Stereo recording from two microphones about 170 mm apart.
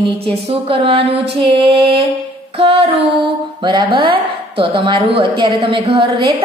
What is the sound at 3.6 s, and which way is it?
A woman's voice, 30° right (ahead or behind).